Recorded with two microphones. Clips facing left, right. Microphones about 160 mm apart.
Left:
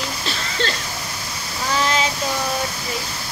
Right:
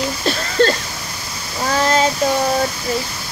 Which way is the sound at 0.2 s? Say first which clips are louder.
Right 12 dB; 45° right (ahead or behind).